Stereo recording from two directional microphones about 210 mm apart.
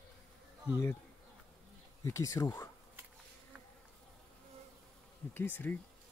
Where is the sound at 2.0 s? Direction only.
15° left (ahead or behind).